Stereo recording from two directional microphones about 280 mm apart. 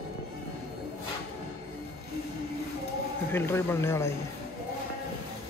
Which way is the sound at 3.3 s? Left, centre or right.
Centre.